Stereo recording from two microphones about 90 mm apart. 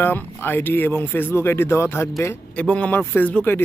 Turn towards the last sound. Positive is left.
turn(degrees=15)  # may be behind; listen again after turning